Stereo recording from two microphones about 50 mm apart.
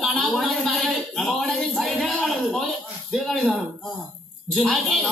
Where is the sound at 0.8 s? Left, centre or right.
Centre.